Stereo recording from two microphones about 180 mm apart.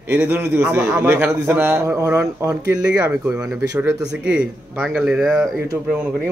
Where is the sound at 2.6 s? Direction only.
60° left (ahead or behind).